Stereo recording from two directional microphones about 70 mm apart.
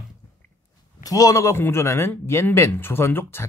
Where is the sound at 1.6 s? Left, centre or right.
Left.